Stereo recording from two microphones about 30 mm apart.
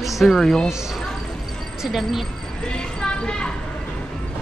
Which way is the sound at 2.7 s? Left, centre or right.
Left.